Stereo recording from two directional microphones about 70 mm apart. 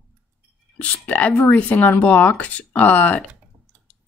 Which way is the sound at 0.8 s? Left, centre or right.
Left.